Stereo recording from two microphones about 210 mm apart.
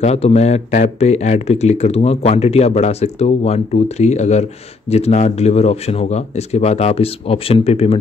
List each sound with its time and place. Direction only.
0.0 s speech: 30° left (ahead or behind)